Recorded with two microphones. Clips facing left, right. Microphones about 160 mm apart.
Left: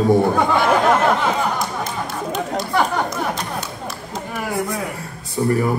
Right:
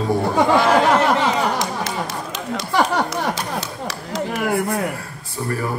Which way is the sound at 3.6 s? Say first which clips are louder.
Right 1 dB; 90° right.